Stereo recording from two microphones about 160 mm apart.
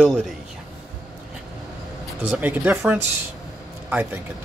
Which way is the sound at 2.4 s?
10° right (ahead or behind).